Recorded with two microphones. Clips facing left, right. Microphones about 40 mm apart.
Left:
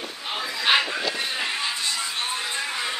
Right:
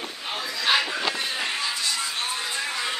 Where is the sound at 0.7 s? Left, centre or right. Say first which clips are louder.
Left 2 dB; left.